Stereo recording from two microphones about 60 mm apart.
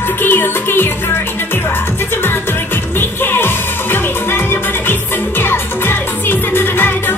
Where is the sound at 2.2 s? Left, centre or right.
Left.